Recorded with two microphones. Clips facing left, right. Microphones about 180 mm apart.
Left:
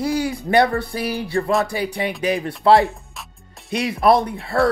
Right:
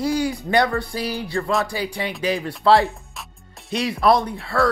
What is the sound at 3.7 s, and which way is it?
Speech, 55° left (ahead or behind).